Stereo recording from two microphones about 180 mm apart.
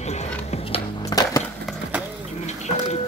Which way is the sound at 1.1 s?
20° left (ahead or behind).